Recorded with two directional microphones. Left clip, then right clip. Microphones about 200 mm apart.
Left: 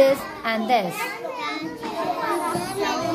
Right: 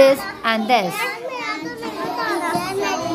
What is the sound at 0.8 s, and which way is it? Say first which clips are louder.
Speech: right 5 dB; 40° right (ahead or behind).